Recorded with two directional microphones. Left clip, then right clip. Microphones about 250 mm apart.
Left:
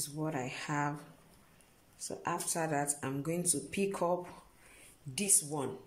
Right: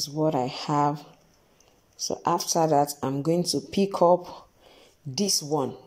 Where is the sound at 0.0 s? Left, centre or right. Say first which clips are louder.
Right 13 dB; right.